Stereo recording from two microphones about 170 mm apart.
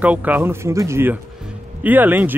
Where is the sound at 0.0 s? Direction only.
10° right (ahead or behind).